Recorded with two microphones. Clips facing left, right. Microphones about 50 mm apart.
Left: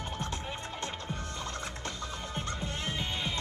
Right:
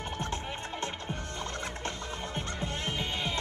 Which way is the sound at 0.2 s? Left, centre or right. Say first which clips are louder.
Right 2 dB; right.